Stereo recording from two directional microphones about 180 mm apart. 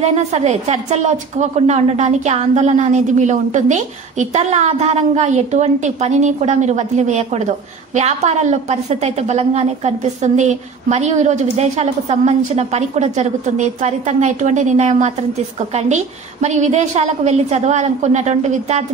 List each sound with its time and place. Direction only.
0.0 s a woman's voice: 40° right (ahead or behind)